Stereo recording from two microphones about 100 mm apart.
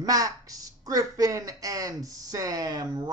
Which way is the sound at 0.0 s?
40° right (ahead or behind).